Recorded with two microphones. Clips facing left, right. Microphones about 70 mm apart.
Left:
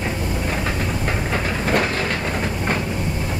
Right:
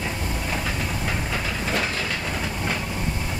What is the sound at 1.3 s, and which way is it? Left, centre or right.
Train, left.